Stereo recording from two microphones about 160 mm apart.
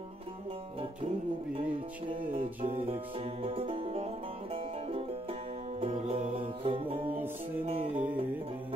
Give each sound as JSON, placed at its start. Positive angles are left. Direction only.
{"t": 3.4, "sound": "music", "side_deg": -35}
{"t": 5.8, "sound": "music", "side_deg": -40}
{"t": 7.6, "sound": "music", "side_deg": -50}